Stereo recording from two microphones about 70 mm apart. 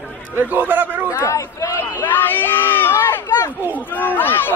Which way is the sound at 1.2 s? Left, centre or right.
Left.